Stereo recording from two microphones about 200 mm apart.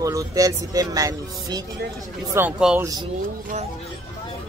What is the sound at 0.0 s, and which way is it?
Speech, 15° right (ahead or behind).